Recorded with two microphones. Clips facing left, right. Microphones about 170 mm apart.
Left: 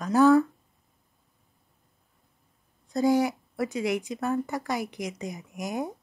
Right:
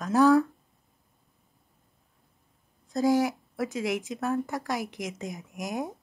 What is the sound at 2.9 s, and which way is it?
Speech, centre (ahead or behind).